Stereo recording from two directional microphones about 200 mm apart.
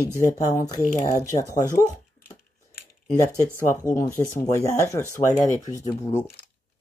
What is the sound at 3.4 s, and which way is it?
Speech, 15° left (ahead or behind).